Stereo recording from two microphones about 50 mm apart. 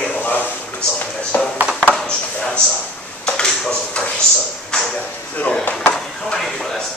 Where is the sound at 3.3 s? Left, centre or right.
Centre.